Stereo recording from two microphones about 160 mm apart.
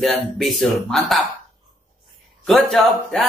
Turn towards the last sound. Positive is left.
turn(degrees=0)  # may be behind; listen again after turning